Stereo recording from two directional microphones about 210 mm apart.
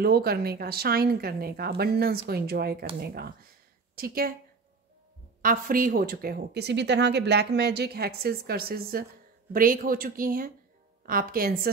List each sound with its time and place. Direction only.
0.0 s speech: 50° right (ahead or behind)
5.4 s speech: 40° right (ahead or behind)